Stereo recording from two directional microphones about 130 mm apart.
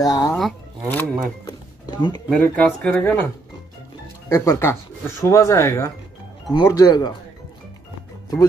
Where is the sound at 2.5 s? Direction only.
10° left (ahead or behind).